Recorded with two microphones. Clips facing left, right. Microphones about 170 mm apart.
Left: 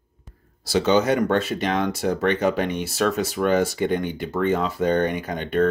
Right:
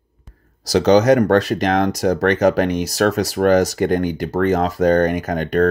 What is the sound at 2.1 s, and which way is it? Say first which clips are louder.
Speech: right 6 dB; 90° right.